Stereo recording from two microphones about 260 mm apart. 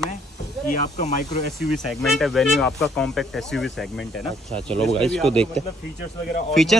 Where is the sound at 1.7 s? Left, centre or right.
Centre.